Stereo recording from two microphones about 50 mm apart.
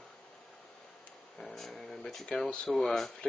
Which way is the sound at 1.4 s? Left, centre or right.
Centre.